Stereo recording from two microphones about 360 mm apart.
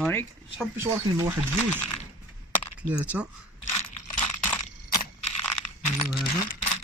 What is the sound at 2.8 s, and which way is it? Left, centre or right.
Speech, centre.